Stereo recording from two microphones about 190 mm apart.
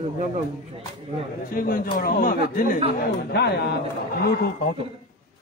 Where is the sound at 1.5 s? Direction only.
45° left (ahead or behind).